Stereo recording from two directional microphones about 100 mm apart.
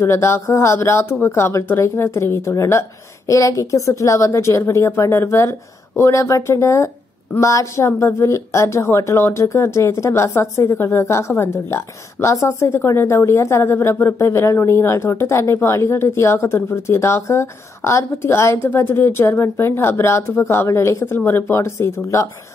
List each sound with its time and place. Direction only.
0.0 s a woman's voice: 25° left (ahead or behind)